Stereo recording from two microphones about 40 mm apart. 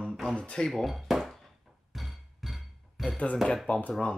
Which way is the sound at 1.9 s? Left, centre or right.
Centre.